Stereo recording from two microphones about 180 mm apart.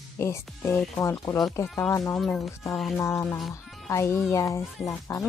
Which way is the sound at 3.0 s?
15° left (ahead or behind).